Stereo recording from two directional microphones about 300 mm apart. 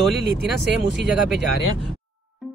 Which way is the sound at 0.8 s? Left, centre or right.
Right.